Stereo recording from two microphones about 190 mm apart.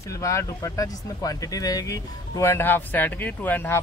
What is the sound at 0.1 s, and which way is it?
Speech, 15° left (ahead or behind).